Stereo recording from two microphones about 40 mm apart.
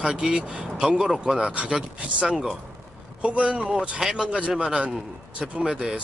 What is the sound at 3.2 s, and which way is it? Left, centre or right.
Speech, right.